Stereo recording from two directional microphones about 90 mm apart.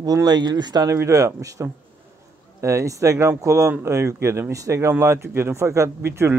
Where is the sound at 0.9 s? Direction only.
35° right (ahead or behind).